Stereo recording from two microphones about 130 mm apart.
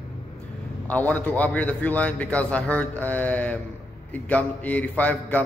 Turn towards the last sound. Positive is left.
turn(degrees=10)  # may be behind; listen again after turning